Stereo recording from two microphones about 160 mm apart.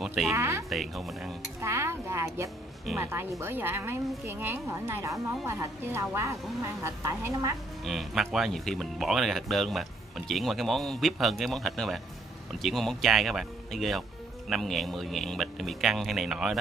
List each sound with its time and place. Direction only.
0.0 s music: centre (ahead or behind)
0.3 s a woman's voice: 15° right (ahead or behind)
0.7 s speech: centre (ahead or behind)
1.6 s a woman's voice: 15° right (ahead or behind)
7.8 s speech: centre (ahead or behind)